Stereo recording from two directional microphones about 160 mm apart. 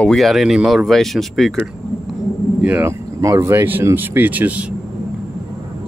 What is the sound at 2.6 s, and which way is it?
Speech, 15° right (ahead or behind).